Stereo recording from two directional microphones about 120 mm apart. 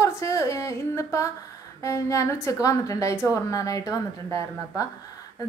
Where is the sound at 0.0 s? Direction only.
25° left (ahead or behind).